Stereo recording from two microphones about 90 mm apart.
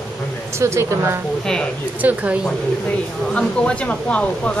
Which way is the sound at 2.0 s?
15° right (ahead or behind).